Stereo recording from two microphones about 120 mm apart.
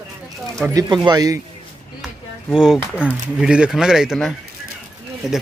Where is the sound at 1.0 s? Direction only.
30° right (ahead or behind).